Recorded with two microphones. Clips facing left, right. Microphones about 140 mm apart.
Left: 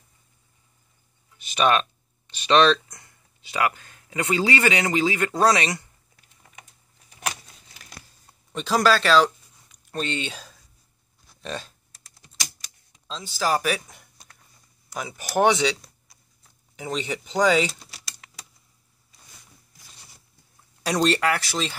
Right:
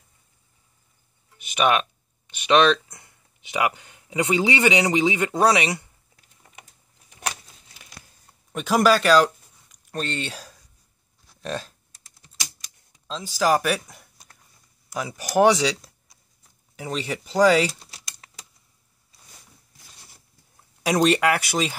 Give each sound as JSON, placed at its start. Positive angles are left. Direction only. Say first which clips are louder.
{"t": 1.5, "sound": "a sound", "louder": "even", "side_deg": -10}
{"t": 3.4, "sound": "a man's voice", "louder": "right 1 dB", "side_deg": -15}
{"t": 5.4, "sound": "speech", "louder": "right 1 dB", "side_deg": -10}
{"t": 8.5, "sound": "speech", "louder": "right 2 dB", "side_deg": -10}
{"t": 13.4, "sound": "speech", "louder": "right 3 dB", "side_deg": 0}
{"t": 13.8, "sound": "a sound", "louder": "right 2 dB", "side_deg": -5}
{"t": 14.9, "sound": "speech", "louder": "right 3 dB", "side_deg": -5}
{"t": 16.7, "sound": "speech", "louder": "even", "side_deg": 0}
{"t": 18.2, "sound": "a sound", "louder": "even", "side_deg": -35}
{"t": 20.8, "sound": "speech", "louder": "right 3 dB", "side_deg": -10}